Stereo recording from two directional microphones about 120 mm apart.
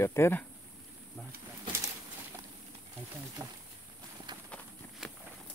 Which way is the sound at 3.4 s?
25° right (ahead or behind).